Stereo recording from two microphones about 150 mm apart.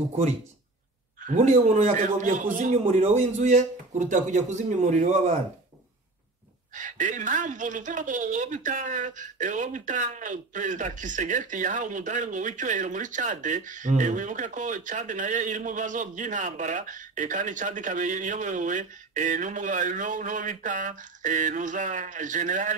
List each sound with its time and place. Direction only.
1.2 s a man's voice: 55° right (ahead or behind)
6.7 s a woman's voice: 55° right (ahead or behind)